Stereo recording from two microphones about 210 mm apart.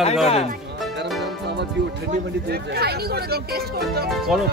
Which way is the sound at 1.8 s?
55° right (ahead or behind).